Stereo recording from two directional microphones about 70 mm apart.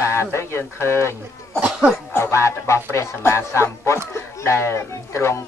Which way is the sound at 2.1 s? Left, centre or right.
Left.